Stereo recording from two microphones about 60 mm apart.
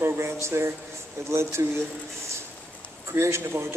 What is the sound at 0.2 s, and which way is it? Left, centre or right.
A man's voice, right.